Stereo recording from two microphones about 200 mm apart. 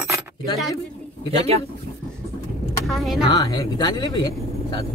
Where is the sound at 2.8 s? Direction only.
Centre (ahead or behind).